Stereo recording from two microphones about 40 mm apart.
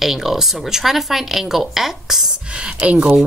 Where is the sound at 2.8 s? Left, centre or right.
Right.